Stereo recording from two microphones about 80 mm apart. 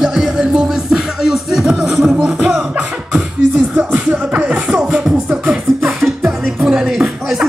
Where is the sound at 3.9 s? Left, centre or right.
Centre.